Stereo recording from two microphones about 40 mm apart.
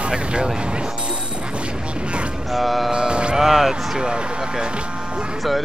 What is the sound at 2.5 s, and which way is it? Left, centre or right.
Music, centre.